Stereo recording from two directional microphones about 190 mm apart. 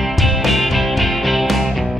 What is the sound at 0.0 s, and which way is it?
Music, centre (ahead or behind).